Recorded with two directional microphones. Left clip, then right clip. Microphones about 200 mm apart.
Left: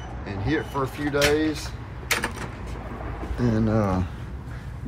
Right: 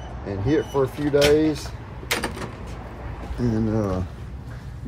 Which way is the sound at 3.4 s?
15° right (ahead or behind).